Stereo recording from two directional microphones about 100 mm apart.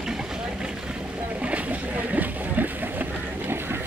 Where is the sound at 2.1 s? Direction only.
15° right (ahead or behind).